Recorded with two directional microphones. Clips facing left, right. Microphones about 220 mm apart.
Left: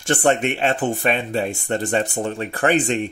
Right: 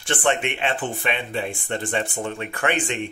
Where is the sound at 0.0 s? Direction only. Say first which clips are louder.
Left 5 dB; 40° left (ahead or behind).